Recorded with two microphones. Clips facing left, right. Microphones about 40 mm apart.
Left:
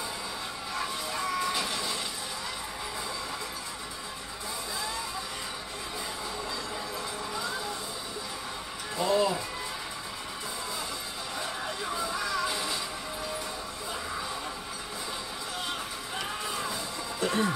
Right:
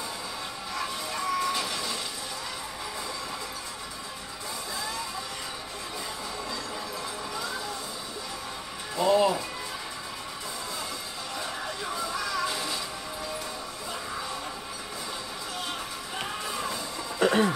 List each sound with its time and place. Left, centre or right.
1.2 s music: centre
1.5 s train: left
8.9 s music: right
11.3 s a sound: centre
12.2 s music: centre
17.2 s music: right